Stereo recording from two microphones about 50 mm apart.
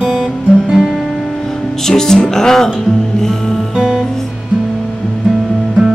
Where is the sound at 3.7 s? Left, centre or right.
Centre.